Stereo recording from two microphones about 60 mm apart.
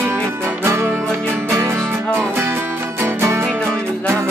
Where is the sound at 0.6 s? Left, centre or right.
Right.